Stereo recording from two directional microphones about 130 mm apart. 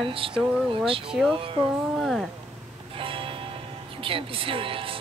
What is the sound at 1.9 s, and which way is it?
Speech, centre (ahead or behind).